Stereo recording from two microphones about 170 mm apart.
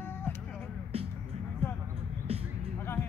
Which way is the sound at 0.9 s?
35° right (ahead or behind).